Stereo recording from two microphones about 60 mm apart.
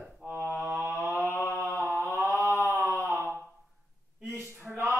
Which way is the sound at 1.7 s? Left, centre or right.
Centre.